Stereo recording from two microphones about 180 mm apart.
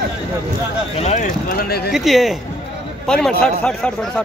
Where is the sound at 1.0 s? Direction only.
40° left (ahead or behind).